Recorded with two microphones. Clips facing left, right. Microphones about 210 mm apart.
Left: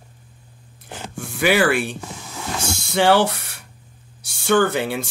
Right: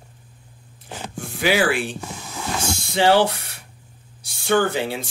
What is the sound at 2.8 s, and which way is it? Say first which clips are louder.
Speech: left 1 dB; 60° left (ahead or behind).